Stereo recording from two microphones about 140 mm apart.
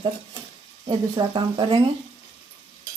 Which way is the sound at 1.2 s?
35° right (ahead or behind).